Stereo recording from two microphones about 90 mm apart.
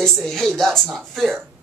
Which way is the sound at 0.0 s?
5° left (ahead or behind).